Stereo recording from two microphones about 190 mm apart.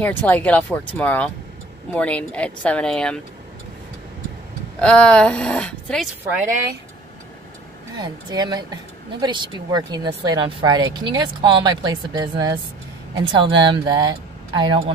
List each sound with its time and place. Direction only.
0.0 s speech: 10° left (ahead or behind)
4.7 s speech: 5° left (ahead or behind)
7.9 s speech: 20° right (ahead or behind)